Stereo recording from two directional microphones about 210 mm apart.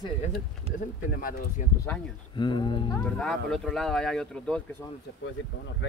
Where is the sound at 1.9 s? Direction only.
10° left (ahead or behind).